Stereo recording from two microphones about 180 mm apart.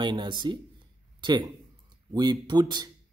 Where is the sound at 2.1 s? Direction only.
25° right (ahead or behind).